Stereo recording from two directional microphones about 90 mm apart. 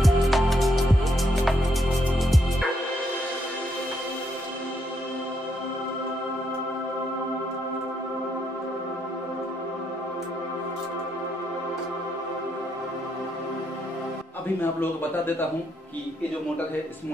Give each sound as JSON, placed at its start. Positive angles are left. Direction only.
{"t": 0.0, "sound": "music", "side_deg": 0}
{"t": 14.6, "sound": "a man's voice", "side_deg": 25}